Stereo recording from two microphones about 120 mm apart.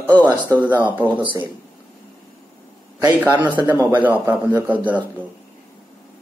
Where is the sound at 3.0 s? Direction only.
15° right (ahead or behind).